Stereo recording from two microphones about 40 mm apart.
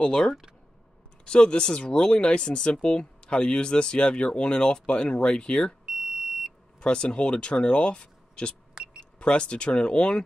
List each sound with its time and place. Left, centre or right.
0.0 s speech: centre
5.9 s smoke detector: centre
6.8 s speech: left
8.7 s vehicle: right
9.2 s speech: left